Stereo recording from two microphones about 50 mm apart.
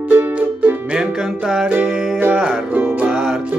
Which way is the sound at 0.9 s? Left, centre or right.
Centre.